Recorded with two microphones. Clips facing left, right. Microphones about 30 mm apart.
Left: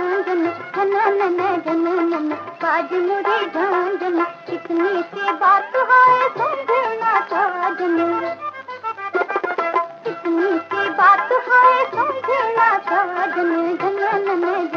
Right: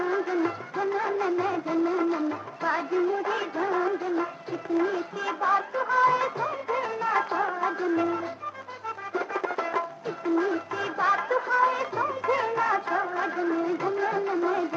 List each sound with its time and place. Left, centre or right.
0.0 s music: left
6.0 s music: left